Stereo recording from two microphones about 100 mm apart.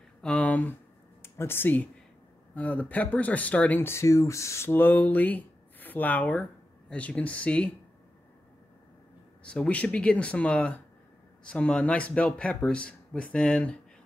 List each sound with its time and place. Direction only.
0.2 s speech: 10° left (ahead or behind)
9.4 s speech: 10° left (ahead or behind)